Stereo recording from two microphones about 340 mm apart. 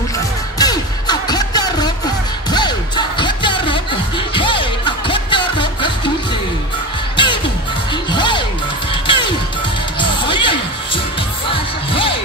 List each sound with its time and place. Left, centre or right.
0.6 s music: centre
7.2 s music: centre